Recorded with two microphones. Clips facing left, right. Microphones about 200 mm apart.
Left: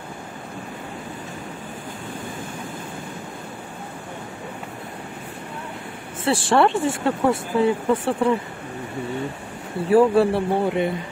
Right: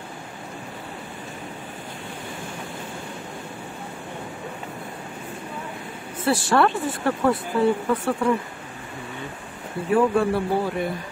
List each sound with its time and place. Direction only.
6.2 s speech: 25° left (ahead or behind)
9.9 s speech: 30° left (ahead or behind)